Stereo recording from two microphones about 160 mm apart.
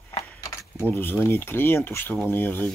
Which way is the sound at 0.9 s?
15° left (ahead or behind).